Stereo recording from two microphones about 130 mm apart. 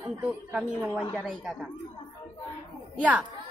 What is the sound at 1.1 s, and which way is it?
Speech, 5° right (ahead or behind).